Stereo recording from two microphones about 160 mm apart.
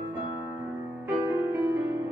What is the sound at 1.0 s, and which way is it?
Music, 15° right (ahead or behind).